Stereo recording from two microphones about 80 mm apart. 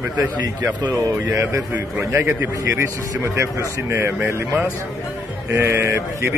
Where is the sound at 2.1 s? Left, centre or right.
Right.